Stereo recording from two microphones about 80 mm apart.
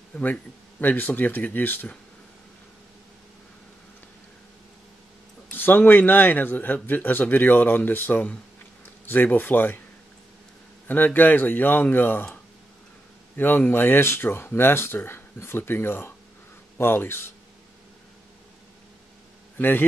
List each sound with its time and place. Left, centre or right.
0.1 s a man's voice: left
5.5 s a man's voice: left
10.9 s a man's voice: left
13.4 s a man's voice: left
19.5 s a man's voice: left